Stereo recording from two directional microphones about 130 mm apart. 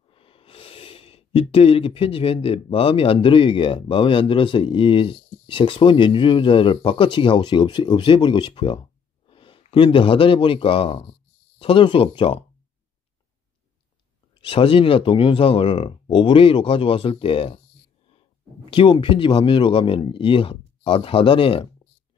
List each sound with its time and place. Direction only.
0.1 s speech: 45° left (ahead or behind)
14.4 s speech: 45° left (ahead or behind)
18.7 s speech: 40° left (ahead or behind)